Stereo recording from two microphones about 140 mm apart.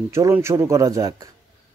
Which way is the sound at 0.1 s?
20° right (ahead or behind).